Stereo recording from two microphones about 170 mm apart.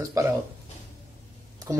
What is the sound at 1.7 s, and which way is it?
Speech, 15° right (ahead or behind).